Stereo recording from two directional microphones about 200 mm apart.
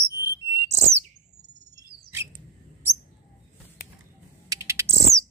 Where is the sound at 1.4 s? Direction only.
35° right (ahead or behind).